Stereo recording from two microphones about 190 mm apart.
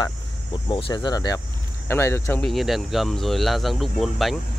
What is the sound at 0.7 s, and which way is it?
Speech, 25° left (ahead or behind).